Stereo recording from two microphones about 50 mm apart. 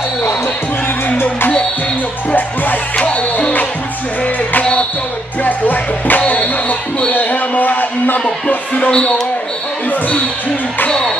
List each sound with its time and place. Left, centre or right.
2.3 s music: left
5.4 s music: left
10.9 s speech: centre